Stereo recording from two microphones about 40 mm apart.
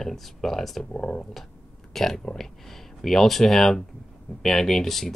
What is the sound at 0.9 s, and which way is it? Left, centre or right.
Speech, left.